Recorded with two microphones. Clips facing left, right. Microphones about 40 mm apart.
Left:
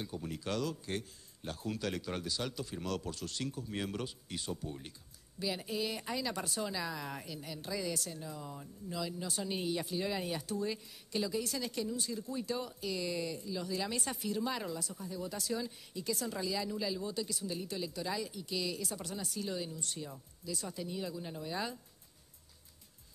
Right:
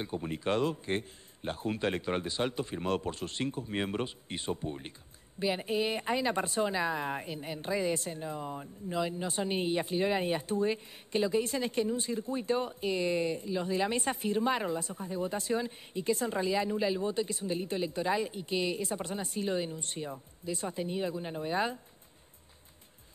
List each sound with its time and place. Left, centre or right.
0.0 s speech: right